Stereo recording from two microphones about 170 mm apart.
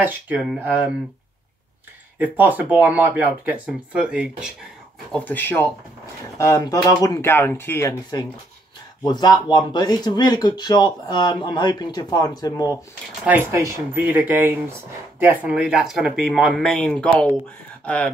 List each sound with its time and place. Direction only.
0.0 s speech: 10° right (ahead or behind)
2.1 s speech: 10° right (ahead or behind)
5.1 s speech: 10° left (ahead or behind)
13.2 s speech: 10° right (ahead or behind); by 18.1 s 5° left (ahead or behind)